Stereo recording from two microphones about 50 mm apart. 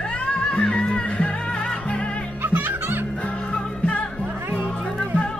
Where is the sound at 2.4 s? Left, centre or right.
Right.